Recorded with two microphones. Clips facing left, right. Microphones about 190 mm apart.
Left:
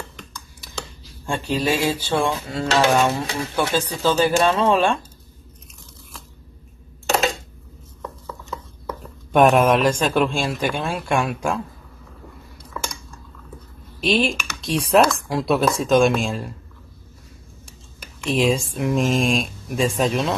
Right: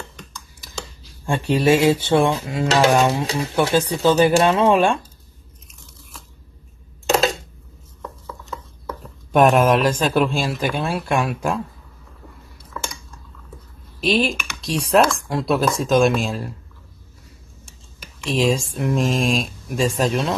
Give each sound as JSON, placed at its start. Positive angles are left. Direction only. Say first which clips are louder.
{"t": 1.2, "sound": "speech", "louder": "right 4 dB", "side_deg": -15}
{"t": 8.5, "sound": "speech", "louder": "left 1 dB", "side_deg": 0}
{"t": 14.0, "sound": "speech", "louder": "right 1 dB", "side_deg": 0}
{"t": 18.0, "sound": "speech", "louder": "even", "side_deg": 0}